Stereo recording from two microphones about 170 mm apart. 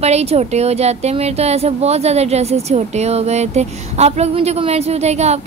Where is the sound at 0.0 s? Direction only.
40° right (ahead or behind).